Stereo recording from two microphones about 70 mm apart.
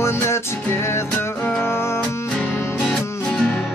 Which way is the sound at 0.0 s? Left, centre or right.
Left.